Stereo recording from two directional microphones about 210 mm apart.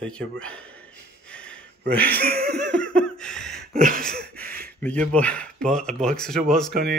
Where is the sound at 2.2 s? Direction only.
50° right (ahead or behind).